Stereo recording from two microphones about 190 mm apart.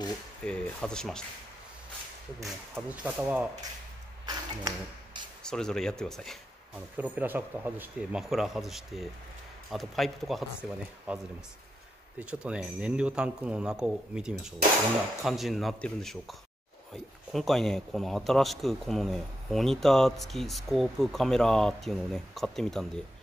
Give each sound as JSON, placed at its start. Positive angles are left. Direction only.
{"t": 0.4, "sound": "speech", "side_deg": 5}
{"t": 2.4, "sound": "speech", "side_deg": -5}
{"t": 4.3, "sound": "a sound", "side_deg": -20}
{"t": 5.4, "sound": "speech", "side_deg": 5}